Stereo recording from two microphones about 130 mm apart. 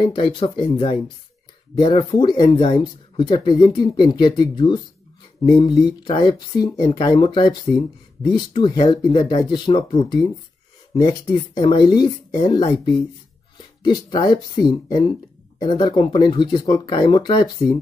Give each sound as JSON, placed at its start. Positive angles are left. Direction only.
{"t": 0.1, "sound": "speech", "side_deg": 40}
{"t": 5.4, "sound": "speech", "side_deg": 40}
{"t": 13.8, "sound": "speech", "side_deg": 35}